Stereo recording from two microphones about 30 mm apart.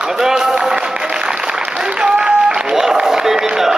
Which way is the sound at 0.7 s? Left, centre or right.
Right.